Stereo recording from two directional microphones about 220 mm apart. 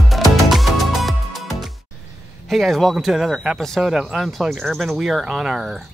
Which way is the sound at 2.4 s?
Centre (ahead or behind).